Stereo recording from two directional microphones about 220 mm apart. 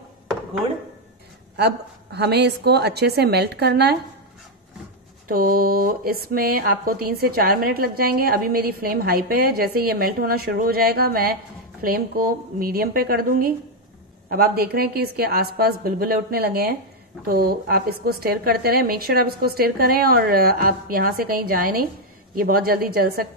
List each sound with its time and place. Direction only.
2.1 s speech: 50° right (ahead or behind)
5.3 s speech: 45° right (ahead or behind)